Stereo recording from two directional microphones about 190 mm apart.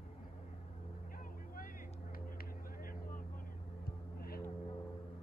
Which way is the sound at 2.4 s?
50° left (ahead or behind).